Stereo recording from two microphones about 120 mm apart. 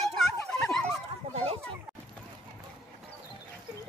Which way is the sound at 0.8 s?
55° right (ahead or behind).